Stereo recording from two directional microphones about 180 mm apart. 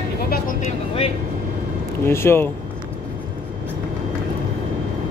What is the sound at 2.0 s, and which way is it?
Speech, 15° left (ahead or behind).